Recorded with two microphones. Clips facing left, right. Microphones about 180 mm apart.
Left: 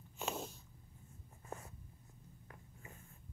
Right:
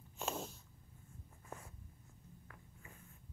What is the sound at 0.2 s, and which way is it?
Snort, centre (ahead or behind).